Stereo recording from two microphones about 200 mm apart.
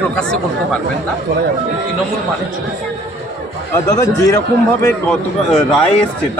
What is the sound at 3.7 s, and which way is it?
Speech, 15° left (ahead or behind).